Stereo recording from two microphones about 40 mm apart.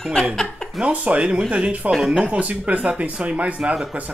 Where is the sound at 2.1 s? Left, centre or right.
Right.